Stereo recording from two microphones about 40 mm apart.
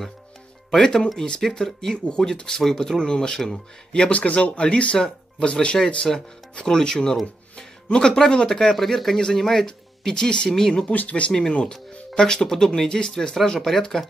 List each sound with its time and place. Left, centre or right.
0.7 s speech: left
8.7 s speech: centre
10.9 s speech: left
12.2 s speech: centre